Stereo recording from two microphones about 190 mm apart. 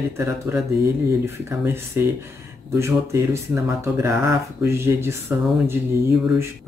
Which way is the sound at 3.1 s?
15° right (ahead or behind).